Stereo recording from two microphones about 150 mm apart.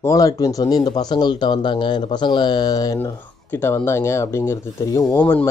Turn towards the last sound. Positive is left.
turn(degrees=15)  # may be behind; listen again after turning